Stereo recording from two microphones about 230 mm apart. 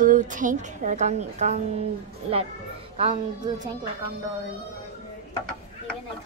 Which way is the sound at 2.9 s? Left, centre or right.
Right.